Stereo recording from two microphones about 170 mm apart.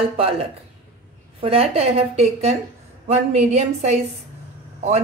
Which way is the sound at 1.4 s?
35° right (ahead or behind).